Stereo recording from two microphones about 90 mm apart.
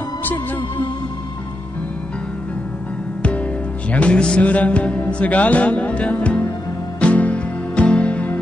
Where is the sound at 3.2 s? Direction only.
15° left (ahead or behind).